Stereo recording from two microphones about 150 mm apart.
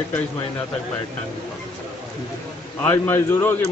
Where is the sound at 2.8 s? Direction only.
15° left (ahead or behind).